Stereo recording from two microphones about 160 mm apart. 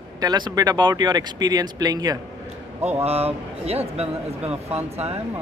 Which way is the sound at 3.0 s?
40° right (ahead or behind).